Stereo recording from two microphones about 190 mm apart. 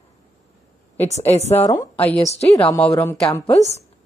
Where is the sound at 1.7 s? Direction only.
15° left (ahead or behind).